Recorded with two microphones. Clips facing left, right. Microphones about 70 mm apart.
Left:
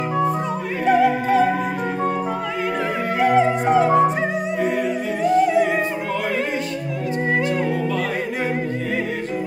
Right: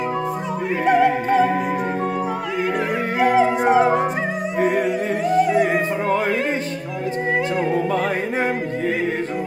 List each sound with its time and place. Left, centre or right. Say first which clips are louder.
0.8 s opera: even; centre
3.2 s music: even; centre
4.6 s music: right 4 dB; right
5.5 s music: even; centre